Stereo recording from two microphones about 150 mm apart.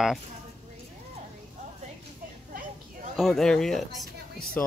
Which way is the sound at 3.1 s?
Centre (ahead or behind).